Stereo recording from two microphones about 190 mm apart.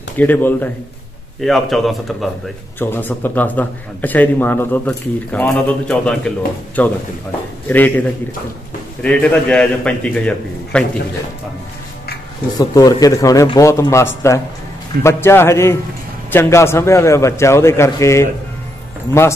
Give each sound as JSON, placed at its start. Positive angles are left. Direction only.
{"t": 0.2, "sound": "a man's voice", "side_deg": 10}
{"t": 9.0, "sound": "a man's voice", "side_deg": 5}
{"t": 12.5, "sound": "a man's voice", "side_deg": 20}